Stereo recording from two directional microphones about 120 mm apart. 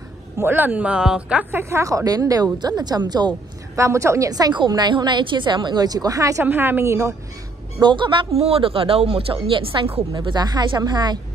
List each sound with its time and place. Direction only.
0.4 s a woman's voice: 15° right (ahead or behind); by 3.3 s 35° right (ahead or behind)
3.7 s a woman's voice: 25° right (ahead or behind)
6.4 s a woman's voice: 15° right (ahead or behind)
7.8 s a woman's voice: 40° right (ahead or behind)
8.3 s speech: 55° right (ahead or behind)
10.1 s a woman's voice: 35° right (ahead or behind)